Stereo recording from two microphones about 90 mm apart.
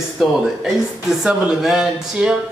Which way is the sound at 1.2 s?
5° right (ahead or behind).